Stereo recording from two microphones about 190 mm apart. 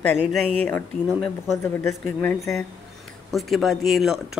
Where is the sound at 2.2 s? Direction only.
10° left (ahead or behind).